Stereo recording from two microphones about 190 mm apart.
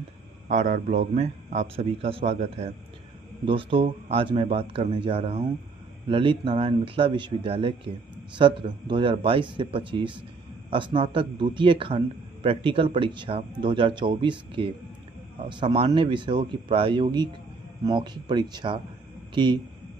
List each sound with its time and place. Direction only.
0.5 s a man's voice: 40° right (ahead or behind); by 19.6 s 25° right (ahead or behind)